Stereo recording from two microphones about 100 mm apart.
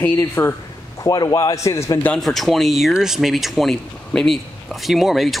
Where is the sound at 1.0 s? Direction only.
40° left (ahead or behind).